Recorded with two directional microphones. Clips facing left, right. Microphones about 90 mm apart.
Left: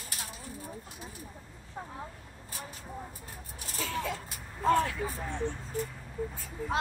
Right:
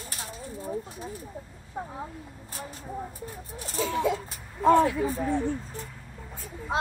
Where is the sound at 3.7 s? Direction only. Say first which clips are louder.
Right 8 dB; 20° right (ahead or behind).